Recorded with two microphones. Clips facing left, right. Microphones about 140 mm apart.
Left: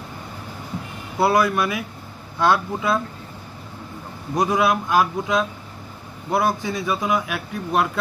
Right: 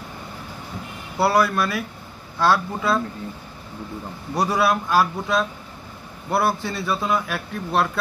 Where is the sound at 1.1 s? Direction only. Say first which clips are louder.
Left 1 dB; 20° left (ahead or behind).